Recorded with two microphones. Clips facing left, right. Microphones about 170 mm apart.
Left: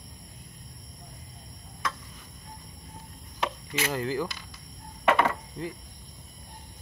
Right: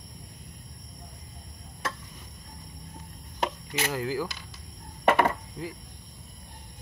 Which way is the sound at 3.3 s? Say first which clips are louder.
Right 1 dB; 35° right (ahead or behind).